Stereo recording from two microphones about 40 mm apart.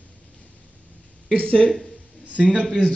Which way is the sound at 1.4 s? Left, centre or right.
Left.